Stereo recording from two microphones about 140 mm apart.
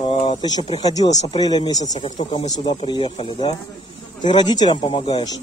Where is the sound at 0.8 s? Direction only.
25° left (ahead or behind).